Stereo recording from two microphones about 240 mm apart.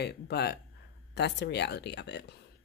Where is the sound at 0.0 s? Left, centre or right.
Left.